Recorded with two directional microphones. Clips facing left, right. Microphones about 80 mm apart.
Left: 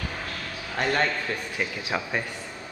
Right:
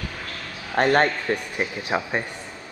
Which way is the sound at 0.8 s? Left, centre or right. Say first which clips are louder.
Right 7 dB; right.